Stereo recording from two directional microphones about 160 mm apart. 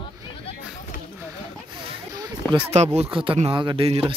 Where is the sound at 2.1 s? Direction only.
25° right (ahead or behind).